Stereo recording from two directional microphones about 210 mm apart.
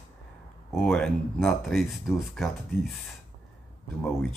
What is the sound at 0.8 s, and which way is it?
Speech, 5° left (ahead or behind).